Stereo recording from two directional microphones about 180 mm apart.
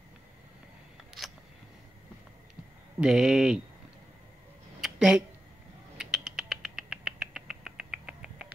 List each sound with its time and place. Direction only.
3.0 s speech: 5° right (ahead or behind)
4.8 s a sound: 5° right (ahead or behind)
5.9 s rodents: 5° right (ahead or behind)